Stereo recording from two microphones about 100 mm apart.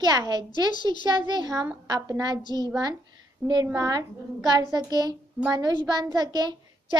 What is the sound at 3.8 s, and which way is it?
A woman's voice, 40° right (ahead or behind).